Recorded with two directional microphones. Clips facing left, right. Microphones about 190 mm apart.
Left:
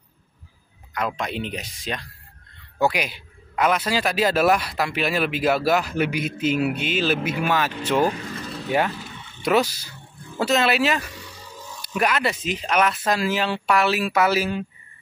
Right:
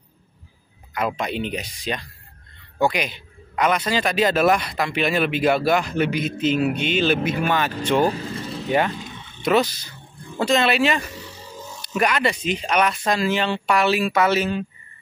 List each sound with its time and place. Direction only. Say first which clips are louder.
0.9 s a man's voice: right 2 dB; 5° right (ahead or behind)
8.0 s speech: even; 30° right (ahead or behind)
8.6 s a man's voice: right 1 dB; 5° left (ahead or behind)
11.1 s a sound: right 3 dB; 25° right (ahead or behind)
12.0 s a man's voice: right 2 dB; 5° left (ahead or behind)